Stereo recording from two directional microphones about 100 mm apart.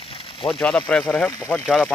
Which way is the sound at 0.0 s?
65° left (ahead or behind).